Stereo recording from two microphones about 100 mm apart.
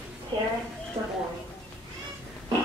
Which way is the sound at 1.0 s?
40° right (ahead or behind).